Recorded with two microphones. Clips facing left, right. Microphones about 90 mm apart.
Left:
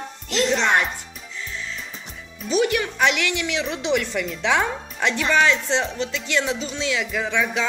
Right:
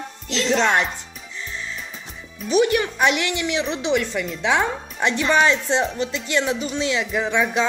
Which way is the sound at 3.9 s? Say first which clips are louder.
Even; centre (ahead or behind).